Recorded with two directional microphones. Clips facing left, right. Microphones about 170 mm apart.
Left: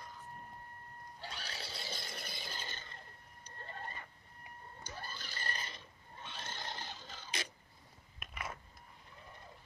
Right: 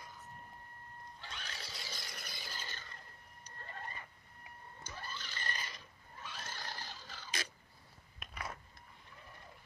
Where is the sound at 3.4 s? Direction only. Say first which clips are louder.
Left 2 dB; 30° left (ahead or behind).